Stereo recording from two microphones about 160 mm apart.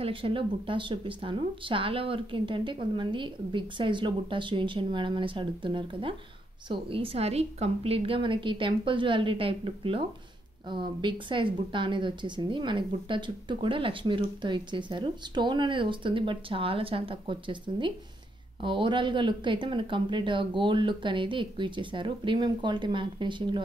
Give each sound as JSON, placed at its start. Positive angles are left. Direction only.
{"t": 0.0, "sound": "a woman's voice", "side_deg": -35}